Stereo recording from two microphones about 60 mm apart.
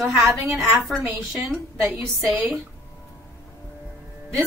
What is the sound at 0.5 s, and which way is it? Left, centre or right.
A woman's voice, centre.